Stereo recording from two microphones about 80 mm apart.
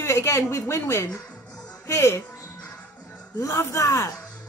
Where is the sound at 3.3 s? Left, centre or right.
Left.